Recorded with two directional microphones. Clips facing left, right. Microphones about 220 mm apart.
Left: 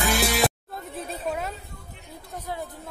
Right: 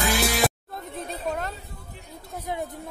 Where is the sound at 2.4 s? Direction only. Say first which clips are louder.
Right 3 dB; 20° right (ahead or behind).